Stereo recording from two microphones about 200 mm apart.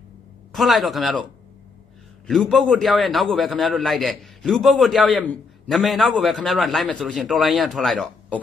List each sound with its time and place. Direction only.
0.5 s a man's voice: centre (ahead or behind)
2.2 s a man's voice: centre (ahead or behind)